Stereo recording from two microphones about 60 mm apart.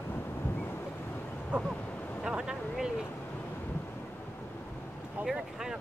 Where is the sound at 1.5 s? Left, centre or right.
Centre.